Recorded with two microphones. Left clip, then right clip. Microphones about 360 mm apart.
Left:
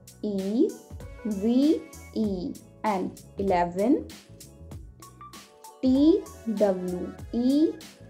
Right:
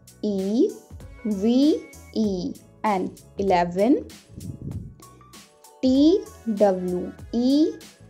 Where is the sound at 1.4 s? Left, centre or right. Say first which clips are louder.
Right 3 dB; centre.